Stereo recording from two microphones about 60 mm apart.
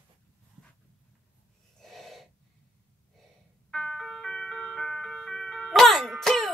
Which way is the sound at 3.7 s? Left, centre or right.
Centre.